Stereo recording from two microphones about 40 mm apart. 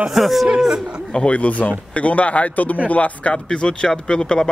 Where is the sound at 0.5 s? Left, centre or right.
Centre.